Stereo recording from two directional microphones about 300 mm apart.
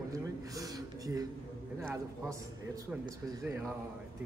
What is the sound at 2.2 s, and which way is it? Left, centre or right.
Speech, centre.